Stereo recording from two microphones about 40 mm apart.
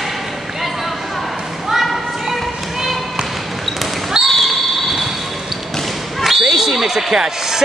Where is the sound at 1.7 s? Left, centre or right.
Centre.